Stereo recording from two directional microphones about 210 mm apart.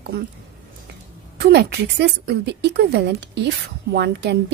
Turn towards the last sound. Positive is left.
turn(degrees=-50)  # may be behind; listen again after turning